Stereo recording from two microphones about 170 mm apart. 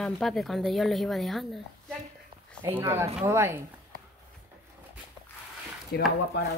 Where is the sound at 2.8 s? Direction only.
15° right (ahead or behind).